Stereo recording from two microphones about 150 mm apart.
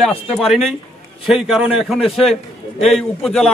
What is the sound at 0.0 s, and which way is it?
A man's voice, centre (ahead or behind).